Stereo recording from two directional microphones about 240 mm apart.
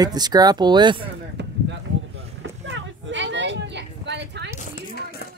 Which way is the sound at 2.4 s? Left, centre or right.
Right.